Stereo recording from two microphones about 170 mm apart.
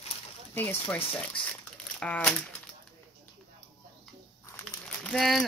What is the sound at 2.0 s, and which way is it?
Speech, 5° left (ahead or behind).